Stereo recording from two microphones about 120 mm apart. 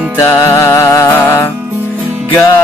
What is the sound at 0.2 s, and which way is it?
Music, 25° left (ahead or behind).